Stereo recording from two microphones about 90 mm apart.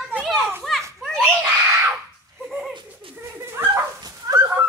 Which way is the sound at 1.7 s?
30° right (ahead or behind).